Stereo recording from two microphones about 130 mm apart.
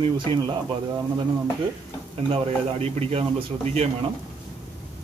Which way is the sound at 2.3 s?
50° right (ahead or behind).